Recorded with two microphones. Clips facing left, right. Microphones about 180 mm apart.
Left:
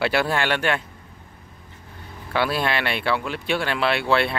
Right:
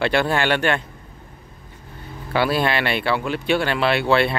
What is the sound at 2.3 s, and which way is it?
Speech, centre (ahead or behind).